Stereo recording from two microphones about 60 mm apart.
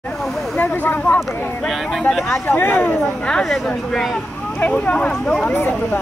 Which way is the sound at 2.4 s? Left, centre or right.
Left.